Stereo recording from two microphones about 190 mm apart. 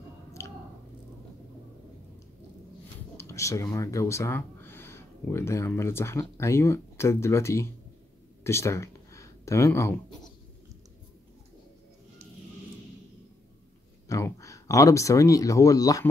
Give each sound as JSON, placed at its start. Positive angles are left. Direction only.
{"t": 0.4, "sound": "a sound", "side_deg": 15}
{"t": 3.2, "sound": "speech", "side_deg": 15}
{"t": 14.0, "sound": "speech", "side_deg": 15}